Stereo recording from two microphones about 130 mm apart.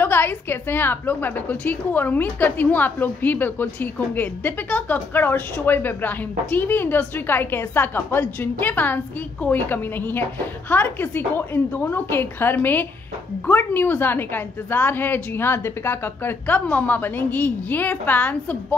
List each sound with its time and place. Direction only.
0.0 s a woman's voice: 15° left (ahead or behind)